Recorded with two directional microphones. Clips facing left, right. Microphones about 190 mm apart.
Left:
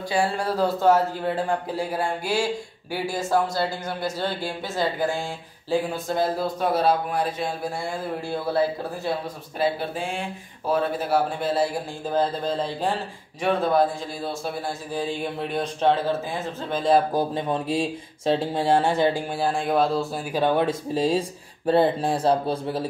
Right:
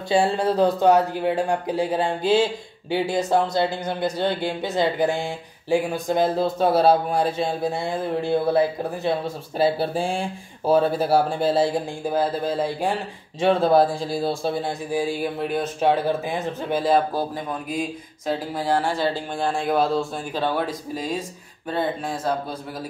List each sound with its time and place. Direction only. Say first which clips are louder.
0.1 s speech: right 5 dB; 25° right (ahead or behind)
9.6 s speech: right 4 dB; 35° right (ahead or behind)
12.1 s a man's voice: right 1 dB; 10° right (ahead or behind)
13.4 s speech: right 4 dB; 30° right (ahead or behind)
14.9 s a man's voice: right 3 dB; 10° right (ahead or behind)
17.5 s speech: left 3 dB; 30° left (ahead or behind)
19.4 s speech: right 1 dB; centre (ahead or behind)
20.3 s speech: left 4 dB; 20° left (ahead or behind)